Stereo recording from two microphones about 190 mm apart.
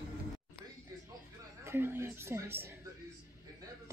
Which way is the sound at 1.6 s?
10° right (ahead or behind).